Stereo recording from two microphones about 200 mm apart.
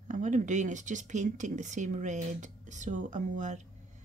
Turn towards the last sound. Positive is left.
turn(degrees=-40)  # may be behind; listen again after turning